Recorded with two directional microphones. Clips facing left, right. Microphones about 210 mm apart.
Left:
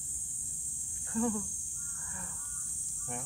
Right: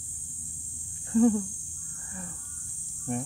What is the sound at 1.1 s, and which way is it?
Speech, 30° right (ahead or behind).